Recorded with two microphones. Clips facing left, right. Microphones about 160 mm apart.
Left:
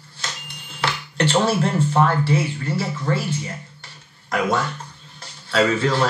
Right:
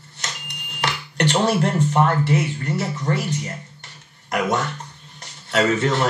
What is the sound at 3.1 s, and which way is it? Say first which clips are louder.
Speech: even; 20° right (ahead or behind).